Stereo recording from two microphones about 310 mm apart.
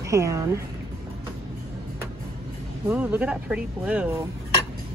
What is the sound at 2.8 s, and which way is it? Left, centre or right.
Speech, centre.